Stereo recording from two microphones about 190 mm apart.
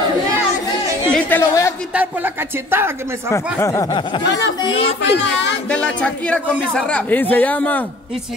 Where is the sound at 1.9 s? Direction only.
10° right (ahead or behind).